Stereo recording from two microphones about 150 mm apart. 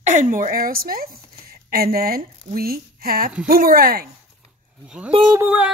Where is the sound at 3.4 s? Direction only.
70° right (ahead or behind).